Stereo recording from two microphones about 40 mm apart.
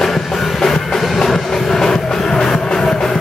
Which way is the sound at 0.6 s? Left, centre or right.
Centre.